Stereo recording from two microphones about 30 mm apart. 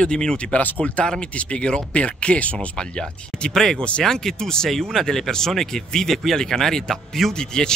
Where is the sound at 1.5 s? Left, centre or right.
Left.